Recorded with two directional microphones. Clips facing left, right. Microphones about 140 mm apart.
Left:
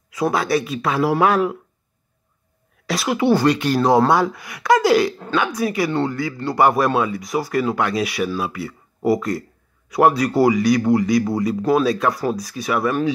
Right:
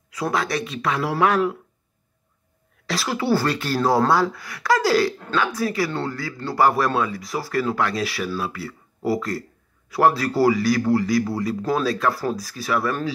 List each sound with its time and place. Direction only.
0.1 s speech: 25° left (ahead or behind)
2.9 s speech: 20° left (ahead or behind)